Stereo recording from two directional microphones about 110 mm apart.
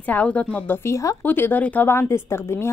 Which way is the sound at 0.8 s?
30° left (ahead or behind).